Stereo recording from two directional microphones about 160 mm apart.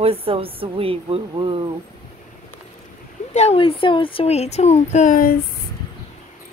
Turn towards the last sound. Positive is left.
turn(degrees=60)  # may be behind; listen again after turning